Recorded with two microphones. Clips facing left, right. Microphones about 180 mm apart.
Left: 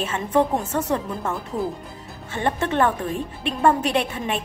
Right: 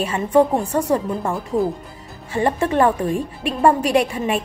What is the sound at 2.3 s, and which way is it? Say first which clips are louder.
A woman's voice: right 4 dB; 5° right (ahead or behind).